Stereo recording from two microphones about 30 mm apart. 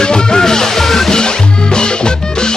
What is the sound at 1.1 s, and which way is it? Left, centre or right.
Music, left.